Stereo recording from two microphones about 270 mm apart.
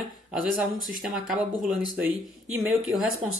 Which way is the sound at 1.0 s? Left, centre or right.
Centre.